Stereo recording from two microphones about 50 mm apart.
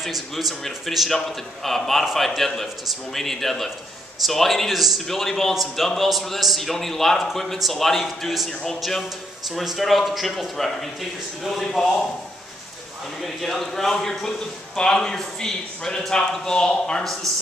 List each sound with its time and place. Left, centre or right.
0.0 s a man's voice: centre
13.2 s a man's voice: centre
17.0 s a man's voice: centre